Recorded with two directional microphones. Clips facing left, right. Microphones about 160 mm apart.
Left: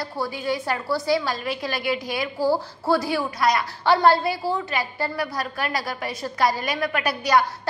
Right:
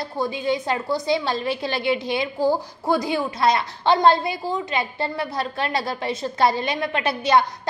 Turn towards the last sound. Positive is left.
turn(degrees=-25)  # may be behind; listen again after turning